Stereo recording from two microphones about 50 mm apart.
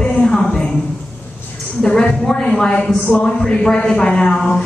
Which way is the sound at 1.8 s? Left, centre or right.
Centre.